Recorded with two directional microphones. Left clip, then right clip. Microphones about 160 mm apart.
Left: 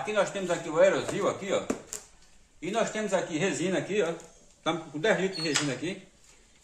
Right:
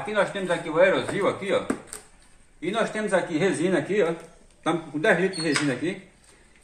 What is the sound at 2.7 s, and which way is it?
A man's voice, 25° right (ahead or behind).